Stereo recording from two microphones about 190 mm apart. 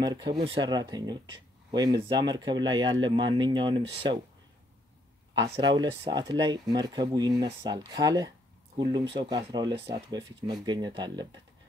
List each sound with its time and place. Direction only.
0.0 s speech: 20° right (ahead or behind)
5.4 s speech: 25° right (ahead or behind)